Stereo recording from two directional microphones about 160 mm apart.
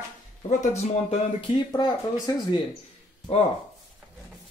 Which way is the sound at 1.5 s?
25° left (ahead or behind).